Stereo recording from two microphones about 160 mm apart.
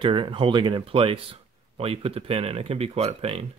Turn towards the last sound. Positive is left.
turn(degrees=-40)  # may be behind; listen again after turning